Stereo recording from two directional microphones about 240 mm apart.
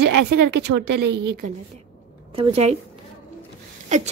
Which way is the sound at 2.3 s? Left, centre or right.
Right.